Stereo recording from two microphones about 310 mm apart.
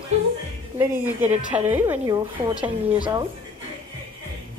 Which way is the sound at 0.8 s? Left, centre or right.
Centre.